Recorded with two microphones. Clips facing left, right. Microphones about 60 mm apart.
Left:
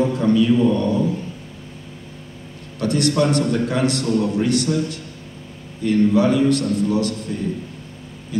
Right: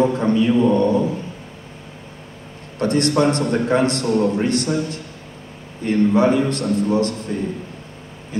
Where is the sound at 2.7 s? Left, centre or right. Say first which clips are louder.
Right 1 dB; right.